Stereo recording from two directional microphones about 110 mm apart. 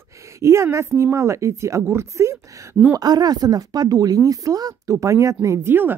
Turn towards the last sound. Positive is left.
turn(degrees=-20)  # may be behind; listen again after turning